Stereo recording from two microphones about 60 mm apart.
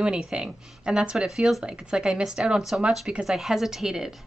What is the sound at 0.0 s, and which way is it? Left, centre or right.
A woman's voice, centre.